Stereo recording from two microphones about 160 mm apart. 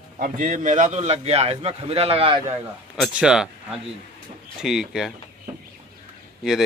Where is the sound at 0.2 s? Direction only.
50° right (ahead or behind); by 2.4 s 35° right (ahead or behind).